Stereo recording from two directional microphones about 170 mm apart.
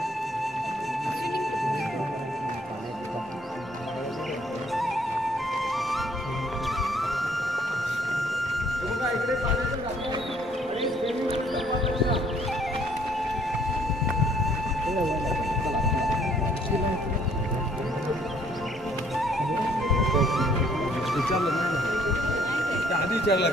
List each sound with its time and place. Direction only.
4.7 s music: centre (ahead or behind)
6.8 s music: centre (ahead or behind)
9.1 s a sound: centre (ahead or behind)
10.8 s music: centre (ahead or behind)
14.2 s music: centre (ahead or behind)
19.2 s music: centre (ahead or behind)
23.2 s a sound: 75° left (ahead or behind)